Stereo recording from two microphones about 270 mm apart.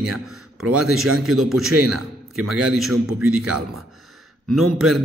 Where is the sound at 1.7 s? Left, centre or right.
Right.